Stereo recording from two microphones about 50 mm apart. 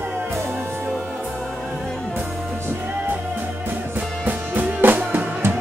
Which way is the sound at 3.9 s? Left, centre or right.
Right.